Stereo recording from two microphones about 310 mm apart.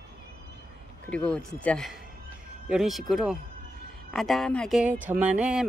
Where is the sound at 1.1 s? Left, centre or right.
Centre.